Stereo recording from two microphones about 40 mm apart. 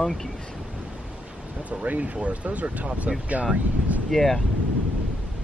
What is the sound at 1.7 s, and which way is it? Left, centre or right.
Speech, right.